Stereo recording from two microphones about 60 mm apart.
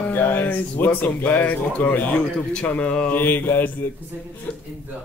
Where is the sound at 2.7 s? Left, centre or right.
Left.